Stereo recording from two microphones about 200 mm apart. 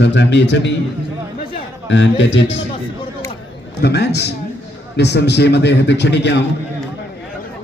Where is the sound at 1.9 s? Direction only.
65° left (ahead or behind).